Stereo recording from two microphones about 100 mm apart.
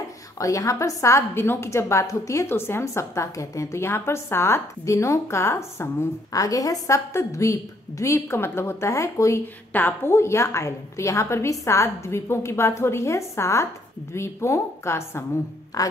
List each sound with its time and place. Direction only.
0.4 s a woman's voice: 35° left (ahead or behind)
9.7 s a woman's voice: 20° left (ahead or behind); by 15.9 s 35° left (ahead or behind)